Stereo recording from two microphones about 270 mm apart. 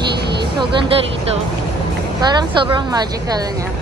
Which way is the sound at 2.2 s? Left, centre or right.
Centre.